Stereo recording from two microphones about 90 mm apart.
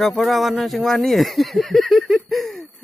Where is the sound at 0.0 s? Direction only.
Centre (ahead or behind).